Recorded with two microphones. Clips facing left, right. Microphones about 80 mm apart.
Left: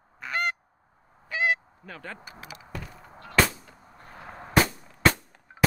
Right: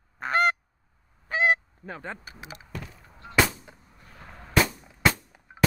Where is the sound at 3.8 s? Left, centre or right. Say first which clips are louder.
Left 5 dB; left.